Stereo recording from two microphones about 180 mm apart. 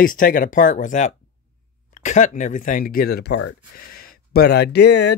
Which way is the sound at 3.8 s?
55° left (ahead or behind).